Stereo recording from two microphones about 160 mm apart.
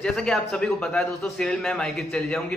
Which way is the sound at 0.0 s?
Centre (ahead or behind).